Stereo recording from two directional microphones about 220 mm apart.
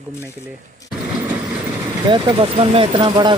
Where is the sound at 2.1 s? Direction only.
25° right (ahead or behind).